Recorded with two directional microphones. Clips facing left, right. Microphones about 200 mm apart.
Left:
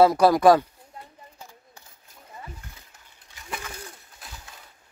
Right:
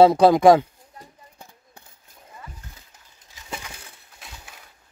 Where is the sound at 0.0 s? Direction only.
25° right (ahead or behind).